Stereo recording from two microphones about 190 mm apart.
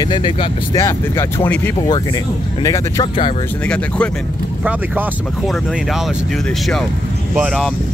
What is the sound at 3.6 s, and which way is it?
Speech, 5° left (ahead or behind).